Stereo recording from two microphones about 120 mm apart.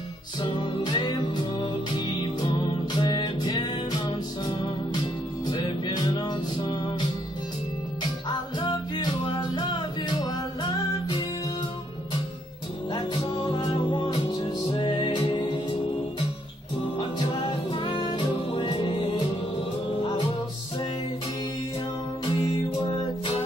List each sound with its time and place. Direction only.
0.4 s music: 40° left (ahead or behind)
5.5 s music: 40° left (ahead or behind)
12.9 s music: 40° left (ahead or behind)
17.3 s music: 45° left (ahead or behind)
22.2 s music: 40° left (ahead or behind)